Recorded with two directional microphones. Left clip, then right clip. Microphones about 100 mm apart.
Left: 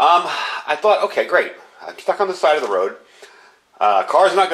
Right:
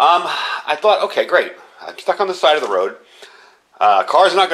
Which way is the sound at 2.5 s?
5° right (ahead or behind).